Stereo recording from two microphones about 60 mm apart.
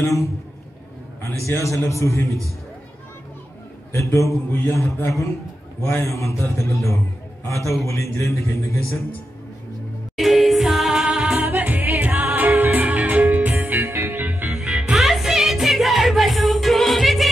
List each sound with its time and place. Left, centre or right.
0.0 s a man's voice: left
1.6 s a man's voice: left
2.2 s a man's voice: right
3.9 s a man's voice: left
10.1 s music: centre
11.3 s music: right
14.5 s music: centre